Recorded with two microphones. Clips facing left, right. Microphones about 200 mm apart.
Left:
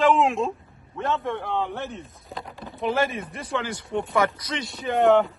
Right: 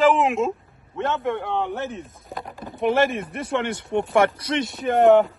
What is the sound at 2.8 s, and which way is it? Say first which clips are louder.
Speech: right 4 dB; 55° right (ahead or behind).